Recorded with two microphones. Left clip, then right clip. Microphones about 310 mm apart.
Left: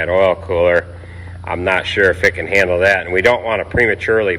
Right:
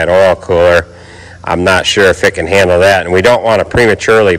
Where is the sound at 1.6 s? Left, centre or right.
Right.